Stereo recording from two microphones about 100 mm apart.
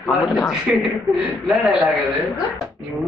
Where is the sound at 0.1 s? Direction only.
Centre (ahead or behind).